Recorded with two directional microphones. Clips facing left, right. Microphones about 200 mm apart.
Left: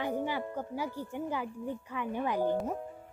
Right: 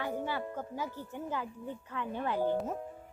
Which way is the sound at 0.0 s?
15° left (ahead or behind).